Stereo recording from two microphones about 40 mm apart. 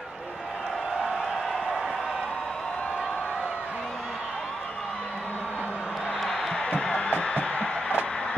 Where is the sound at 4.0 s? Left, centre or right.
Centre.